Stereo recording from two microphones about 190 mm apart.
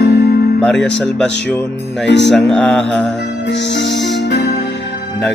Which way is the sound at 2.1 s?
65° left (ahead or behind).